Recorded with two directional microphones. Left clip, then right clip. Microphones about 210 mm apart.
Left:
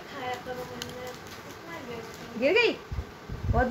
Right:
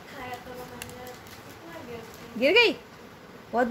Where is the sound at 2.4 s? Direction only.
50° right (ahead or behind).